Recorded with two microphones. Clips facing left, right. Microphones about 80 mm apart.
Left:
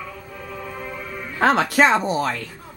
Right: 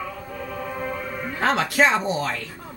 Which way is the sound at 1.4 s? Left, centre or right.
Left.